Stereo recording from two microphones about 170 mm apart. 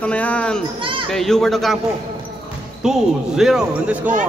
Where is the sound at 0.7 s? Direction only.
30° right (ahead or behind).